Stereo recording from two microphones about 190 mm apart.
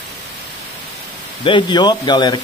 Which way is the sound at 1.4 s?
25° left (ahead or behind).